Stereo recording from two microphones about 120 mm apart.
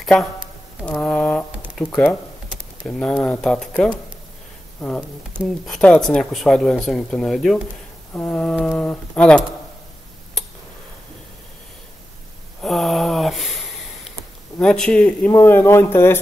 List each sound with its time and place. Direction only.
0.0 s speech: centre (ahead or behind)
0.9 s a sound: 10° left (ahead or behind)
1.8 s speech: 5° left (ahead or behind)
5.4 s speech: 5° right (ahead or behind)
5.8 s speech: 5° left (ahead or behind)
8.1 s speech: 15° left (ahead or behind)
12.6 s a sound: centre (ahead or behind)
14.6 s speech: 5° left (ahead or behind)
15.3 s speech: 20° left (ahead or behind)